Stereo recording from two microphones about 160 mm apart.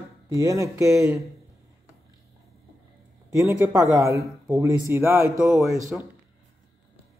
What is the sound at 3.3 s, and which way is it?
Speech, 20° right (ahead or behind).